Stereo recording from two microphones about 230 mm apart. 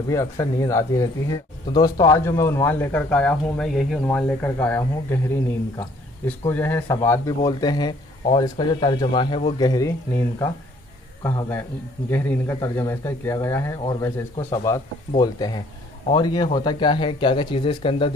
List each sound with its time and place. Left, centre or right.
0.1 s speech: centre